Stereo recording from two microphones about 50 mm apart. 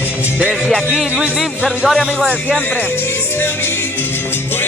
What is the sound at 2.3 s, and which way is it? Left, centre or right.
Speech, right.